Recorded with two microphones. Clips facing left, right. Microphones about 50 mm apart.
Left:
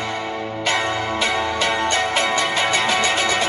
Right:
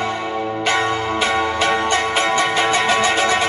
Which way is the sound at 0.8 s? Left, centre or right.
Centre.